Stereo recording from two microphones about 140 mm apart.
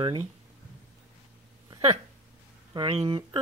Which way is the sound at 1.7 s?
35° right (ahead or behind).